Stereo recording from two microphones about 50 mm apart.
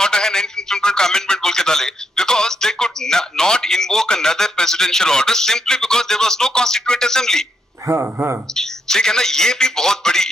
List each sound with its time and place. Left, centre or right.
0.0 s a man's voice: centre
8.0 s speech: right
8.5 s a man's voice: centre